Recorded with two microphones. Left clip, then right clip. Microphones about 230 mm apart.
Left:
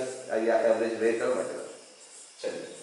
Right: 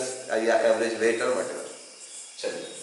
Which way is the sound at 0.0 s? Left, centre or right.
Centre.